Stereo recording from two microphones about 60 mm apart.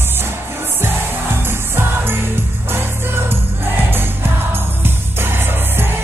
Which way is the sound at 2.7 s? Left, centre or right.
Right.